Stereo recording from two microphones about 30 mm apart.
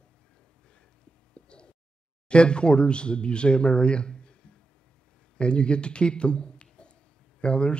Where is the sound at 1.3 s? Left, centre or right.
Left.